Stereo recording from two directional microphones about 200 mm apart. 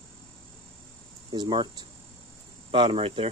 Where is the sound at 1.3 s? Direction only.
20° right (ahead or behind).